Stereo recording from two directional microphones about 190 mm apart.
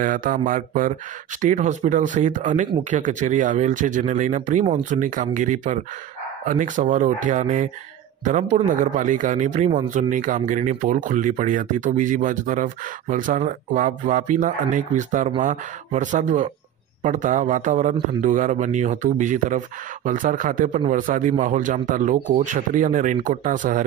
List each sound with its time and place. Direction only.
0.0 s speech: 45° right (ahead or behind)